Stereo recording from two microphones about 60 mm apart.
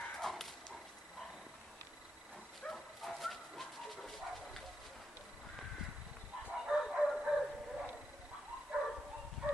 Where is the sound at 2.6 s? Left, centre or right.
Centre.